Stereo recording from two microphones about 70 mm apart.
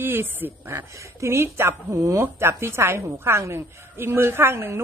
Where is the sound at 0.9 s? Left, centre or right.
Right.